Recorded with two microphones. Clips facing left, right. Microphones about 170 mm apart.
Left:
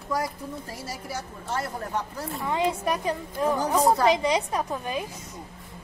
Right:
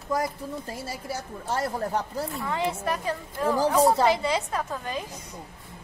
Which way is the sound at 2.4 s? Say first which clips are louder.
Left 4 dB; 15° left (ahead or behind).